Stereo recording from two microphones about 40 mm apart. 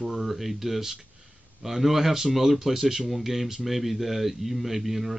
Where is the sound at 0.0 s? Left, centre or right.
Centre.